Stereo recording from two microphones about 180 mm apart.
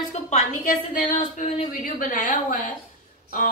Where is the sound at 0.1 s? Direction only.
45° left (ahead or behind).